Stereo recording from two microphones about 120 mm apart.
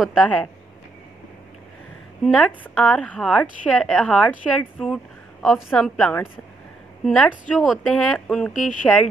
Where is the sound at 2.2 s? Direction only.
5° left (ahead or behind).